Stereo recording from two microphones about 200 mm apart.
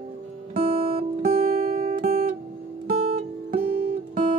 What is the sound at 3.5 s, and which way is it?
Music, 45° right (ahead or behind).